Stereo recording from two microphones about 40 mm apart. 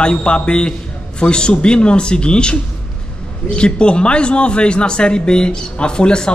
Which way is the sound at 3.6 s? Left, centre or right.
Left.